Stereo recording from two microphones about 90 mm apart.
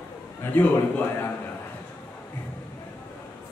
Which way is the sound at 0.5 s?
20° left (ahead or behind).